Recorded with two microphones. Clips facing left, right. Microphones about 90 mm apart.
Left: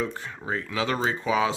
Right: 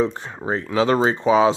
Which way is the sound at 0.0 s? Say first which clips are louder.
Right 8 dB; 25° right (ahead or behind).